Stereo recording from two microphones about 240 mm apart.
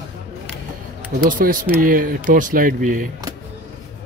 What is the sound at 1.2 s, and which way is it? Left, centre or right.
Speech, right.